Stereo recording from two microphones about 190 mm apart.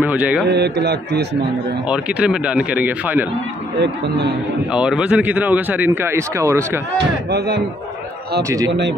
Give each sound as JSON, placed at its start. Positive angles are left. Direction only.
{"t": 0.0, "sound": "a man's voice", "side_deg": -10}
{"t": 0.5, "sound": "a man's voice", "side_deg": -60}
{"t": 1.9, "sound": "speech", "side_deg": -5}
{"t": 4.7, "sound": "speech", "side_deg": -5}
{"t": 7.0, "sound": "a man's voice", "side_deg": -60}
{"t": 8.4, "sound": "speech", "side_deg": -15}